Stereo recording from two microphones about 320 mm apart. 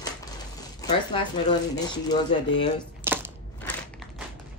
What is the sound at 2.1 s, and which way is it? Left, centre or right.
Speech, centre.